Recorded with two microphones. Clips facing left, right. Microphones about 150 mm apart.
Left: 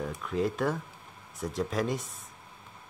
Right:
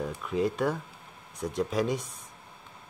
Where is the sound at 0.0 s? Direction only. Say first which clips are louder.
Right 1 dB; 5° right (ahead or behind).